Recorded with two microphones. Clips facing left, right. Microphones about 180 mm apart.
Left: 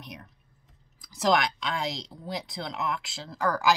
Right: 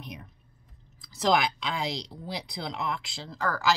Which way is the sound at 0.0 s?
Centre (ahead or behind).